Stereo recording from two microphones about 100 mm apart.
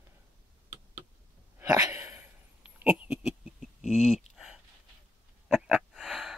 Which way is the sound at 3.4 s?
Centre (ahead or behind).